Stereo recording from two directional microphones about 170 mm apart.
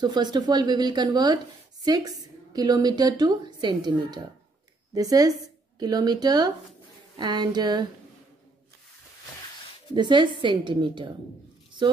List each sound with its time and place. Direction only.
0.0 s a woman's voice: 25° right (ahead or behind)
9.9 s a woman's voice: 25° right (ahead or behind)